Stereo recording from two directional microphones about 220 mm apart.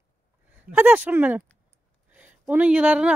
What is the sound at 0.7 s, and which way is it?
Speech, 5° right (ahead or behind).